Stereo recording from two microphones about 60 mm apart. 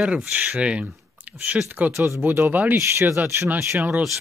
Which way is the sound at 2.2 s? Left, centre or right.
Right.